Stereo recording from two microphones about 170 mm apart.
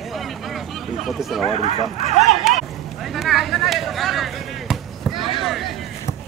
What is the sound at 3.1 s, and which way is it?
Basketball bounce, centre (ahead or behind).